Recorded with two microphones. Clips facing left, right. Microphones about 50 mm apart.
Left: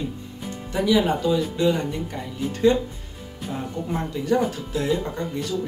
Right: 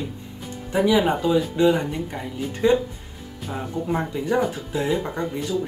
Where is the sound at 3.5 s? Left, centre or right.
Centre.